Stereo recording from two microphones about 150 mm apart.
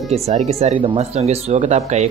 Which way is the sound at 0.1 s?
45° right (ahead or behind).